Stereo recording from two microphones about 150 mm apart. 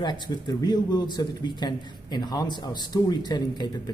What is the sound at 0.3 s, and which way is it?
Speech, 25° left (ahead or behind).